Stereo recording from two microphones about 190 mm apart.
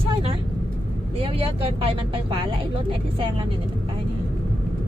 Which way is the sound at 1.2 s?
30° right (ahead or behind).